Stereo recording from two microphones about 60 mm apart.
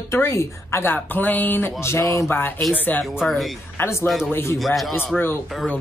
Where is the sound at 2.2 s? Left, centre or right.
Left.